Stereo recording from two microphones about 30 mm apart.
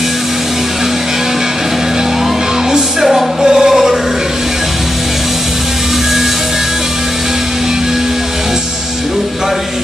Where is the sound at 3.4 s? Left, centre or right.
Centre.